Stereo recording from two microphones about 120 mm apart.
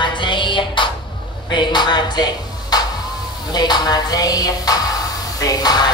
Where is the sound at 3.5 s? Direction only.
35° left (ahead or behind).